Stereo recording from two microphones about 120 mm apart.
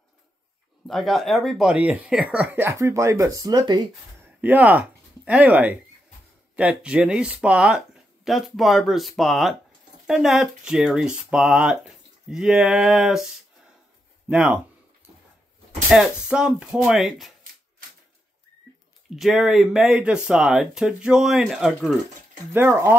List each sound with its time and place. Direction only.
0.8 s speech: centre (ahead or behind); by 3.8 s 35° right (ahead or behind)
4.2 s speech: 15° right (ahead or behind)
14.3 s speech: 10° right (ahead or behind)
15.9 s speech: 5° right (ahead or behind)
19.1 s speech: centre (ahead or behind)
22.5 s speech: 20° right (ahead or behind)